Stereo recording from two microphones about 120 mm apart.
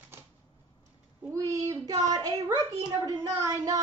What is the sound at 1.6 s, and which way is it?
A child's voice, 25° right (ahead or behind).